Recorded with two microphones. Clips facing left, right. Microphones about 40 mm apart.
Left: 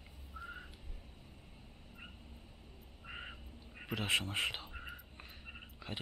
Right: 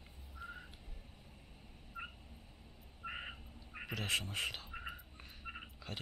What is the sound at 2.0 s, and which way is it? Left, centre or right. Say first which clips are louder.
Cat: right 7 dB; right.